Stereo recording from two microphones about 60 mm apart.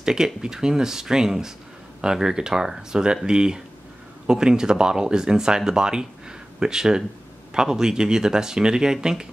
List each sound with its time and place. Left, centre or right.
0.0 s speech: centre